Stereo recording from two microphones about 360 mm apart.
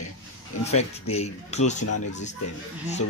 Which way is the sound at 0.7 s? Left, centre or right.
Centre.